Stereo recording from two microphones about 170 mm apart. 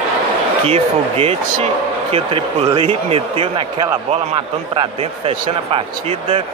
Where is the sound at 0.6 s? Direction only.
35° right (ahead or behind).